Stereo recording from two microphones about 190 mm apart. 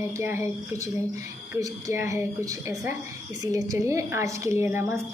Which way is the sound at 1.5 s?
15° right (ahead or behind).